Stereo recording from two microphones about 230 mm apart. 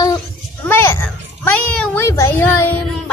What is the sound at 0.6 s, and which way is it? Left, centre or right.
Children playing, centre.